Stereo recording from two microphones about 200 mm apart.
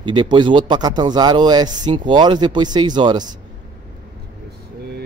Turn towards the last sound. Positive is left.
turn(degrees=-20)  # may be behind; listen again after turning